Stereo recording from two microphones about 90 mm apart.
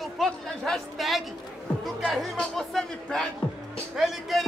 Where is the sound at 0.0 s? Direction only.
Centre (ahead or behind).